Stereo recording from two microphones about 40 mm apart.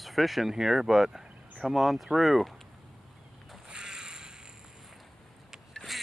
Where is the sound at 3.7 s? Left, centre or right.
Centre.